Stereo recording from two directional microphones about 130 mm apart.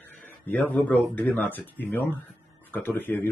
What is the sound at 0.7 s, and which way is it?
Speech, 10° left (ahead or behind).